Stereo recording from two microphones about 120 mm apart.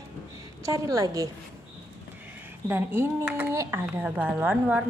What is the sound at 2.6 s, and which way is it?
A woman's voice, 20° right (ahead or behind).